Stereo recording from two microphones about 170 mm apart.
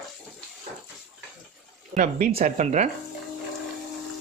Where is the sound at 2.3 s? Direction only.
40° right (ahead or behind).